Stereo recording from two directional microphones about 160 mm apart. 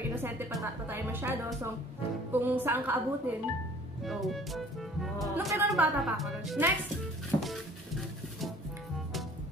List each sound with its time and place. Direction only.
0.0 s music: 15° right (ahead or behind)
0.6 s a woman's voice: 15° right (ahead or behind)
4.0 s speech: centre (ahead or behind)
7.3 s music: 20° left (ahead or behind)